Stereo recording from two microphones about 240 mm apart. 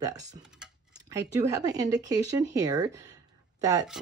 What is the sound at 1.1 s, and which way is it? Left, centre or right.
Speech, centre.